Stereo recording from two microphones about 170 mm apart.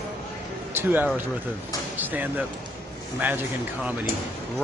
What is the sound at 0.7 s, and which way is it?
Speech, 10° right (ahead or behind).